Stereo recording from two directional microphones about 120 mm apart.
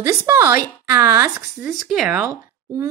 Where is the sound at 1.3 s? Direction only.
5° right (ahead or behind).